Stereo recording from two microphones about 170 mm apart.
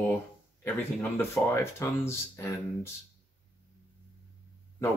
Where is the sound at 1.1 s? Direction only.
15° left (ahead or behind).